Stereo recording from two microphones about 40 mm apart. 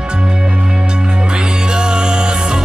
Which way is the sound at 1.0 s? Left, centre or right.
Right.